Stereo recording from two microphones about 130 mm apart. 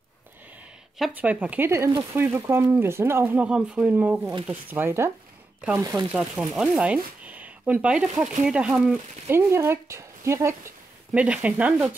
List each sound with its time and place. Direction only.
1.1 s speech: 10° right (ahead or behind)
6.1 s speech: 5° right (ahead or behind)
9.3 s speech: 20° right (ahead or behind)
11.1 s speech: 10° right (ahead or behind)